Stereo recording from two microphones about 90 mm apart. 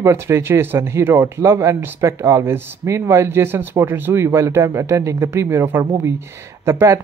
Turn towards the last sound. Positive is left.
turn(degrees=-30)  # may be behind; listen again after turning